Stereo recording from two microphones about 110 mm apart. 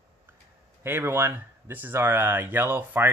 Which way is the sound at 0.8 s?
20° right (ahead or behind).